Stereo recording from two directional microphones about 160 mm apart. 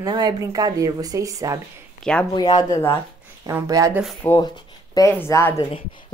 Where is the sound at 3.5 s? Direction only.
20° right (ahead or behind).